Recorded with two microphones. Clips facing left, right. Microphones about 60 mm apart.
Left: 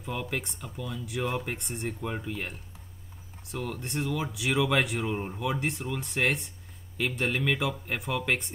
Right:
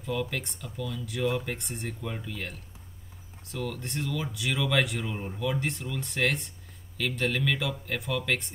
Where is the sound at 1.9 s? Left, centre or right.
Left.